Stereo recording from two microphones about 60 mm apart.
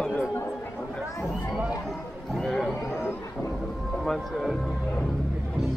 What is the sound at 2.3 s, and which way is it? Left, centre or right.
Speech, centre.